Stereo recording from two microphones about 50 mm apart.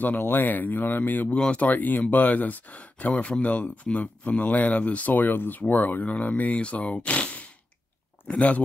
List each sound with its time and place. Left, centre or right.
0.0 s speech: left